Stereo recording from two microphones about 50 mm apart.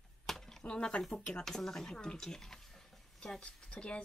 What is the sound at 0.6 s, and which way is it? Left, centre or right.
Speech, left.